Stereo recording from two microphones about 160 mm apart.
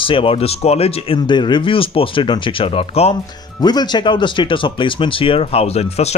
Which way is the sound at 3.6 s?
25° left (ahead or behind).